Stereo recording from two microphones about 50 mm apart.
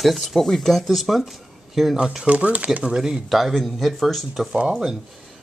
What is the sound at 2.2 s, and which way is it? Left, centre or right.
Speech, right.